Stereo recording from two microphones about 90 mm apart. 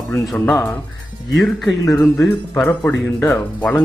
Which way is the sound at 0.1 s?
10° left (ahead or behind).